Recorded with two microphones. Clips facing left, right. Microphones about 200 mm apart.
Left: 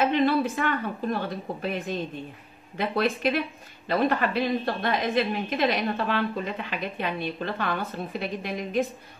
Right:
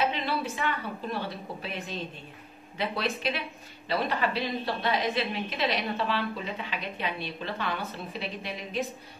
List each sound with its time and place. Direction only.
0.0 s a woman's voice: 50° left (ahead or behind)